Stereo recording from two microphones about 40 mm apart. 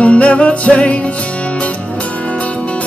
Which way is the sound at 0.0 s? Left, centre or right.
Left.